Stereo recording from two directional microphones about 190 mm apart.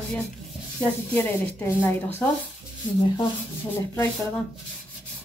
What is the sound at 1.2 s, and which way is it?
A woman's voice, 10° left (ahead or behind).